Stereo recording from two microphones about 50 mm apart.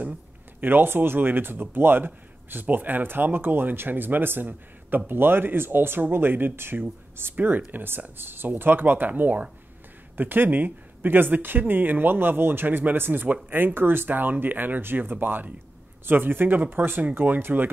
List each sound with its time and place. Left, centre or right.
0.6 s speech: right